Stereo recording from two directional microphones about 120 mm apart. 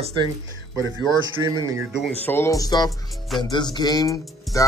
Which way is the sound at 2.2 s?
20° left (ahead or behind).